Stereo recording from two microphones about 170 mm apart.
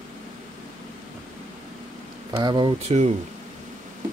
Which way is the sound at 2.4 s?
25° right (ahead or behind).